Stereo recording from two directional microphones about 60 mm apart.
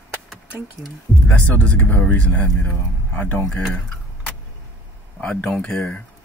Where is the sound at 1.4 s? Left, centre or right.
Left.